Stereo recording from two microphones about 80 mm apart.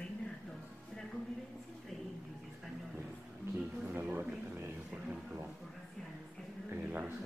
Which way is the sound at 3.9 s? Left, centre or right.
Right.